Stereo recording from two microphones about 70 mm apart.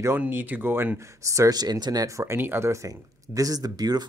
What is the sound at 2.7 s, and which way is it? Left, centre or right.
Speech, right.